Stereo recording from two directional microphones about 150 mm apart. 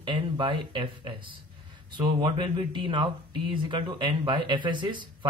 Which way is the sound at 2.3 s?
30° right (ahead or behind).